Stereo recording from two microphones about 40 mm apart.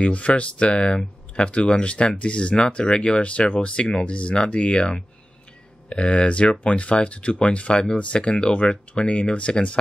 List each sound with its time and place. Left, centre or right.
0.0 s speech: left